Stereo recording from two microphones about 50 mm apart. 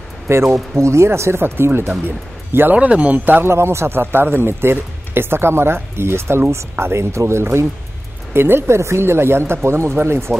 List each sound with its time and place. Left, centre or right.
0.3 s speech: right
2.7 s speech: right
3.3 s speech: right
8.3 s speech: right